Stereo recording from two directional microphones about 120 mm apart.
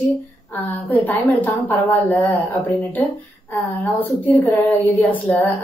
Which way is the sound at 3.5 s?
15° left (ahead or behind).